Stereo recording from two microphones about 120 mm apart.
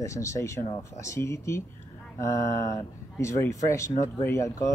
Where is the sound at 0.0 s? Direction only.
25° left (ahead or behind).